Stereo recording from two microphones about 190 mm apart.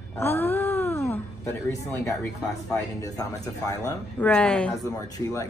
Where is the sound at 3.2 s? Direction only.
15° left (ahead or behind).